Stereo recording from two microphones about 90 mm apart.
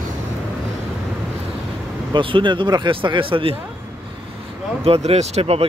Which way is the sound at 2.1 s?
65° right (ahead or behind).